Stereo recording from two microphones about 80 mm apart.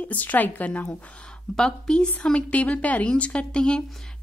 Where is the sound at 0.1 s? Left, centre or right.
Left.